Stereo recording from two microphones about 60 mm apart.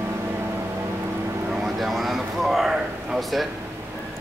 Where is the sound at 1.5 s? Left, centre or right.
Centre.